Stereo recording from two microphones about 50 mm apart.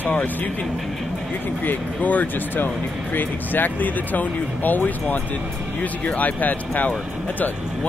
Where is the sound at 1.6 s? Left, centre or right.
Left.